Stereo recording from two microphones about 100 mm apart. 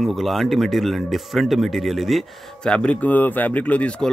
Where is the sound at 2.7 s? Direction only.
10° left (ahead or behind).